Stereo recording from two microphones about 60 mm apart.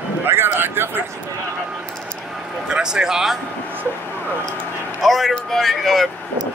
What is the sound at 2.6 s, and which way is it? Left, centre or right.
Speech, centre.